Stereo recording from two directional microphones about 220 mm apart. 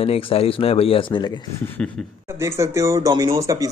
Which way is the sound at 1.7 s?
5° left (ahead or behind).